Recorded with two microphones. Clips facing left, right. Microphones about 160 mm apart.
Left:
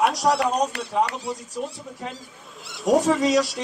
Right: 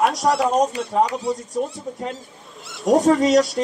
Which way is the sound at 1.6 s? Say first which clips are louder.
Right 5 dB; 40° right (ahead or behind).